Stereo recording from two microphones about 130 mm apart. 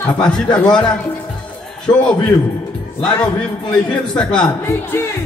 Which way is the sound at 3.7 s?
5° left (ahead or behind).